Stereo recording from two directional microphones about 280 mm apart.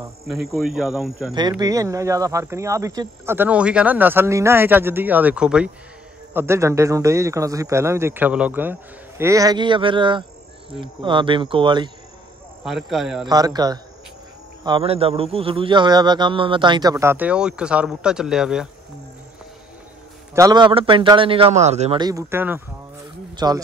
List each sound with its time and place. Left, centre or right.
0.3 s speech: centre
1.3 s speech: centre
12.6 s speech: centre
13.3 s speech: centre
20.3 s speech: centre